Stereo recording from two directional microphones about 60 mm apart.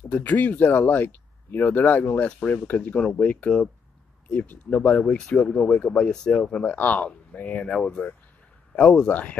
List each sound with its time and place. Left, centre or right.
0.1 s speech: left